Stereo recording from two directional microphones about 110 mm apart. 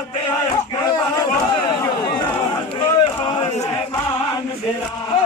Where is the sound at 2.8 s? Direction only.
45° left (ahead or behind).